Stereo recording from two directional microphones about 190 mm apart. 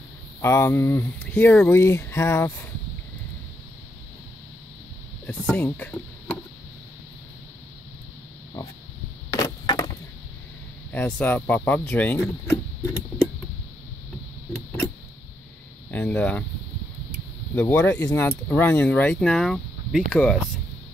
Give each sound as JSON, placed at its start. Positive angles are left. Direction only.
{"t": 0.4, "sound": "speech", "side_deg": 15}
{"t": 5.2, "sound": "speech", "side_deg": 10}
{"t": 9.3, "sound": "a sound", "side_deg": 20}
{"t": 10.9, "sound": "speech", "side_deg": 5}
{"t": 15.9, "sound": "speech", "side_deg": 10}
{"t": 17.6, "sound": "speech", "side_deg": 10}